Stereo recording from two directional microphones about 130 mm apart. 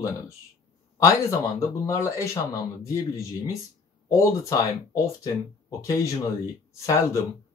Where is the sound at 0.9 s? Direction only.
25° left (ahead or behind).